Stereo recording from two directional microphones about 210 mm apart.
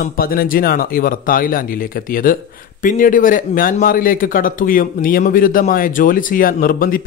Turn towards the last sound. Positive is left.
turn(degrees=45)  # may be behind; listen again after turning